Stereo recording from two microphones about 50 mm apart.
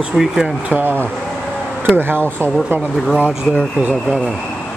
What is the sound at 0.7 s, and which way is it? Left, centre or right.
Speech, right.